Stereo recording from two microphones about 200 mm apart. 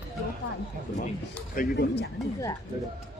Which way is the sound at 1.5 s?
50° left (ahead or behind).